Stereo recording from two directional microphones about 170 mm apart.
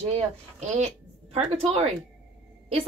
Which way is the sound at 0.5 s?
40° right (ahead or behind).